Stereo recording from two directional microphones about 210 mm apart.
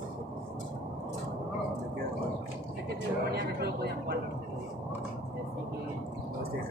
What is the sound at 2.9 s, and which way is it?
Vehicle, 50° right (ahead or behind).